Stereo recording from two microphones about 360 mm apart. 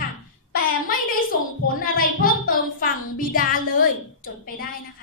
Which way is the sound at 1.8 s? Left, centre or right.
Left.